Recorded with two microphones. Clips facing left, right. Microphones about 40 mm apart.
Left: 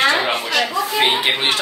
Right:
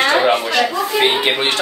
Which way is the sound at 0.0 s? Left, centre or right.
Centre.